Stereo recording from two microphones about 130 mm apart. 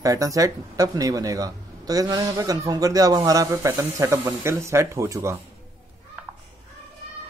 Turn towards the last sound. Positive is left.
turn(degrees=-25)  # may be behind; listen again after turning